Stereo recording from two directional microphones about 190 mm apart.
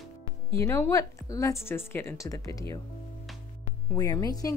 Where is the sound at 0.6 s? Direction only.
15° left (ahead or behind).